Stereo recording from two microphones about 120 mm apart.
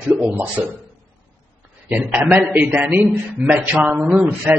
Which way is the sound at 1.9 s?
15° right (ahead or behind).